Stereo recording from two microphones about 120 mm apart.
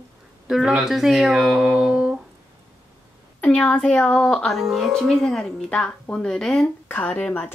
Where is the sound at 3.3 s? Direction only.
10° left (ahead or behind).